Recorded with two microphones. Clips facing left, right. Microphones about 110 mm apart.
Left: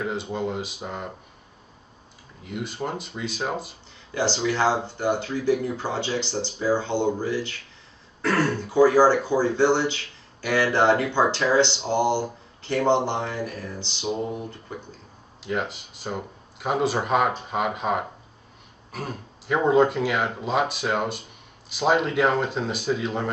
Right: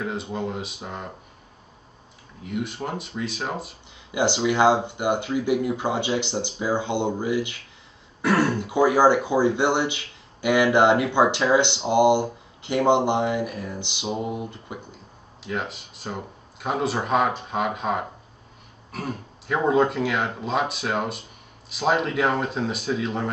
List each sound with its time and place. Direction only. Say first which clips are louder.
0.0 s speech: left 1 dB; centre (ahead or behind)
2.4 s speech: right 1 dB; centre (ahead or behind)
4.1 s speech: right 2 dB; 15° right (ahead or behind)
15.4 s speech: left 2 dB; centre (ahead or behind)